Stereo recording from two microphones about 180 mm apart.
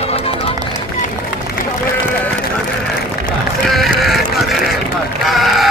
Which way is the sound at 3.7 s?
Centre (ahead or behind).